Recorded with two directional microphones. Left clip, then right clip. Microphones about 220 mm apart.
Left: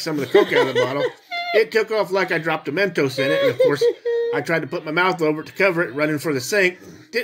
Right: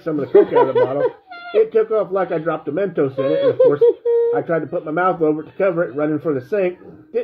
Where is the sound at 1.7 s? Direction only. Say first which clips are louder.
Right 2 dB; 45° left (ahead or behind).